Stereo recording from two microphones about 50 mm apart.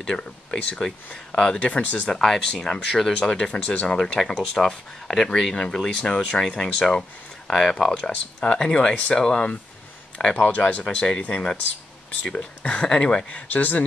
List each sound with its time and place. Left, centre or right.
0.0 s speech: centre
1.6 s speech: left
2.0 s speech: centre; by 3.8 s left
3.8 s speech: centre
6.0 s speech: centre
10.8 s speech: centre
13.5 s speech: left